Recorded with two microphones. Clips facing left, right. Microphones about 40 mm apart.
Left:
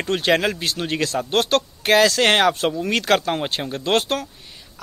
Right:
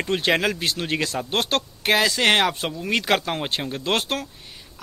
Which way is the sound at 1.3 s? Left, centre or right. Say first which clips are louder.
Left 4 dB; right.